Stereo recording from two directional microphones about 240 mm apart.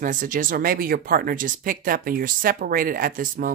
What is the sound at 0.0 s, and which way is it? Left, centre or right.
Speech, right.